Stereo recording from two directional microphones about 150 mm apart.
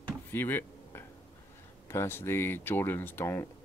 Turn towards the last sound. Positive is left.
turn(degrees=15)  # may be behind; listen again after turning